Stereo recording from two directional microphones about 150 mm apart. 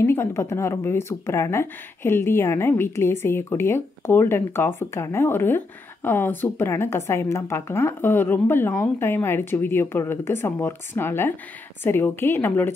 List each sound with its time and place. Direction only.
0.0 s a woman's voice: 20° left (ahead or behind)